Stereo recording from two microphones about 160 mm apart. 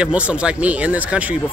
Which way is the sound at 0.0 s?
5° right (ahead or behind).